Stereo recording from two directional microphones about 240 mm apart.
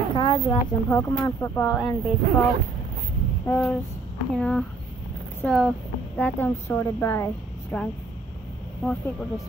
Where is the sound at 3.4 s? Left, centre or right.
Centre.